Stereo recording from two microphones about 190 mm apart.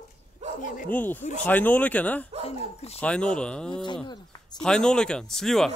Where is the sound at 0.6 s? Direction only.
40° left (ahead or behind).